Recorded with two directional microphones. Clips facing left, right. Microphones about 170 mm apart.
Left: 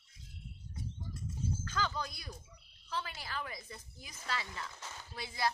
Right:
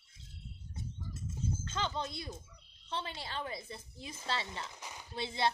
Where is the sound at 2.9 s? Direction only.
25° right (ahead or behind).